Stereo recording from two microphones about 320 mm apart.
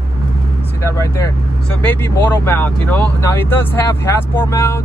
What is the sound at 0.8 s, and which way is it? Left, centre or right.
Speech, centre.